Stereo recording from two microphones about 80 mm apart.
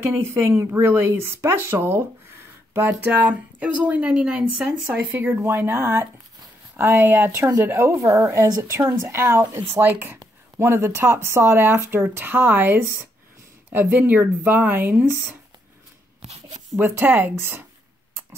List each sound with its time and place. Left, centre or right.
0.0 s speech: right; by 4.7 s centre
5.4 s speech: right
9.5 s speech: right
16.7 s speech: right